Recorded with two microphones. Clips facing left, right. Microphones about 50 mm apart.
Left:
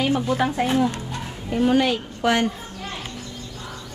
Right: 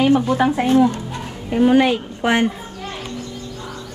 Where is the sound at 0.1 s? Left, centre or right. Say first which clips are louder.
Right 5 dB; right.